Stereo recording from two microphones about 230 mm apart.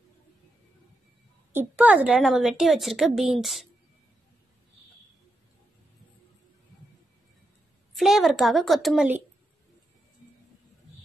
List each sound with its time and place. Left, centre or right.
1.5 s a woman's voice: centre
7.9 s a woman's voice: centre